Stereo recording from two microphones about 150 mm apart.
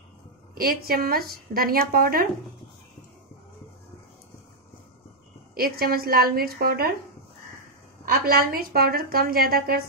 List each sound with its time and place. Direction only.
0.6 s speech: 85° right
5.5 s speech: 85° right
8.1 s a woman's voice: 90° right